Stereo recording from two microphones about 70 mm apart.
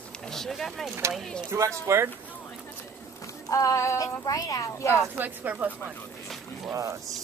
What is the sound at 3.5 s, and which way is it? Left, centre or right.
Music, left.